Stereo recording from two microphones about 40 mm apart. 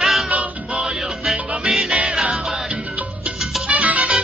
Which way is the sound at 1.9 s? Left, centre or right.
Centre.